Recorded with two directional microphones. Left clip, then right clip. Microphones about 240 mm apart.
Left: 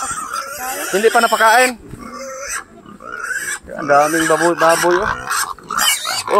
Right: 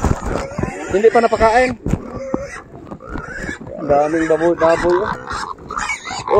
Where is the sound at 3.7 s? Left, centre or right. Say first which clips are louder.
Left 2 dB; left.